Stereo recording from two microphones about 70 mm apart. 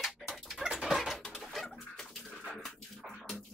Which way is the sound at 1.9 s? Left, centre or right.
Centre.